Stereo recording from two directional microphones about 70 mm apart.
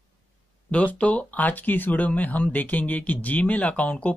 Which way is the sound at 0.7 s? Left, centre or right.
Centre.